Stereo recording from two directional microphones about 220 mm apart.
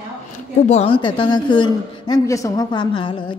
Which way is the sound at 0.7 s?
25° left (ahead or behind).